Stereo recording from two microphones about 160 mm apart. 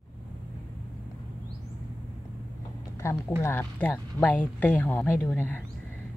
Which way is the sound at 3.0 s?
15° left (ahead or behind).